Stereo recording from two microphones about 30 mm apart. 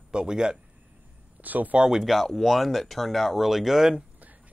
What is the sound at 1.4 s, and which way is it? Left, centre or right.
Speech, right.